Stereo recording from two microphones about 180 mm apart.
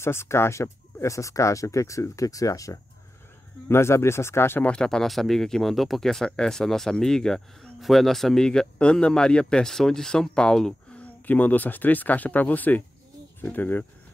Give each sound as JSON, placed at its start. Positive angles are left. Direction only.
{"t": 0.0, "sound": "speech", "side_deg": 15}